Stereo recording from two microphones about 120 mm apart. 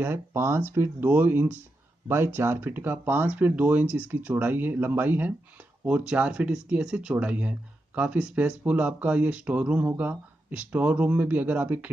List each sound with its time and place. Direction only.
0.0 s speech: 20° right (ahead or behind)